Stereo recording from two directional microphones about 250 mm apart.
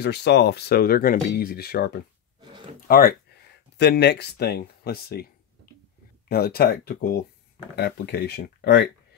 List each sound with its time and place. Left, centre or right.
0.0 s speech: left
6.2 s speech: left